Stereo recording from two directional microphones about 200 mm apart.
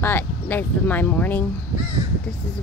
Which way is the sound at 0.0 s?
10° left (ahead or behind).